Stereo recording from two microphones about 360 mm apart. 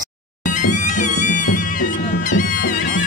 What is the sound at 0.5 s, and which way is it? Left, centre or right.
Music, left.